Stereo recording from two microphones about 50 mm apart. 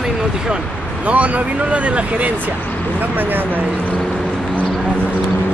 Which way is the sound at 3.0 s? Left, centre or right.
Right.